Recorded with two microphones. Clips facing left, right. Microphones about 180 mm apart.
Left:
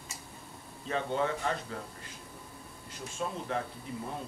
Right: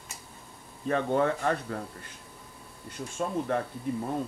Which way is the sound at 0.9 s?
55° right (ahead or behind).